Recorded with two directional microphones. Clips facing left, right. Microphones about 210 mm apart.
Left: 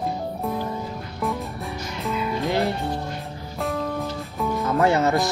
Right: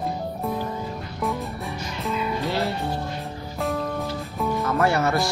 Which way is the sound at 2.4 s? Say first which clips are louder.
Left 2 dB; 15° left (ahead or behind).